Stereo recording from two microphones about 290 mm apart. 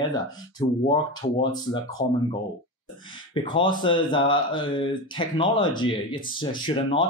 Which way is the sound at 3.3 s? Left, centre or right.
Centre.